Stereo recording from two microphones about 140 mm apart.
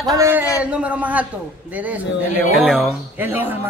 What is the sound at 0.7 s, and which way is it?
Speech, 10° right (ahead or behind).